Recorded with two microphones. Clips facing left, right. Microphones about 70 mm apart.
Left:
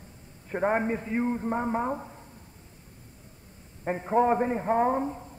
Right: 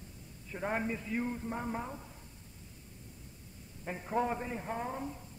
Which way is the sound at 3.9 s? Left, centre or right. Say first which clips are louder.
Left 10 dB; left.